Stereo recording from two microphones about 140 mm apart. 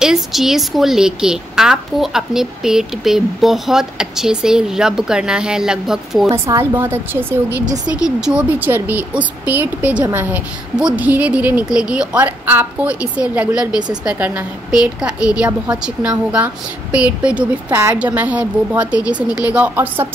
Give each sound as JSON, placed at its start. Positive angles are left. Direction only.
{"t": 0.0, "sound": "a woman's voice", "side_deg": -5}
{"t": 6.2, "sound": "a woman's voice", "side_deg": -25}